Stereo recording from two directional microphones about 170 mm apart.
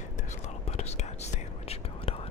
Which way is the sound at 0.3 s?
40° left (ahead or behind).